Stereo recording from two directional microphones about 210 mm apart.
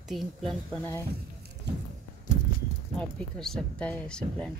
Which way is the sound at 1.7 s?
55° right (ahead or behind).